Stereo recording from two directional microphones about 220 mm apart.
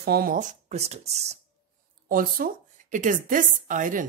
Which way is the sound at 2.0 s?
40° right (ahead or behind).